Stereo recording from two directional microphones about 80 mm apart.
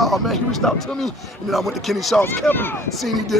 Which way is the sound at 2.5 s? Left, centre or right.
Left.